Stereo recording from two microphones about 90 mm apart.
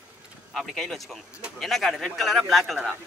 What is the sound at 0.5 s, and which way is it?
Speech, 5° left (ahead or behind).